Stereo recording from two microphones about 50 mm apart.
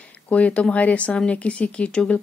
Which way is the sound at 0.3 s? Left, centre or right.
Left.